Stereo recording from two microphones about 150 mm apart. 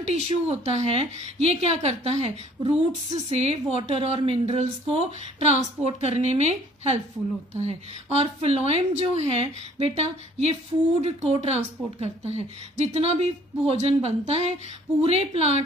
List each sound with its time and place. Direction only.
0.1 s a woman's voice: 45° right (ahead or behind)